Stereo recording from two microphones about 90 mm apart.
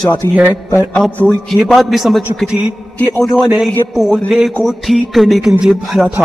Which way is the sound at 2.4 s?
10° right (ahead or behind).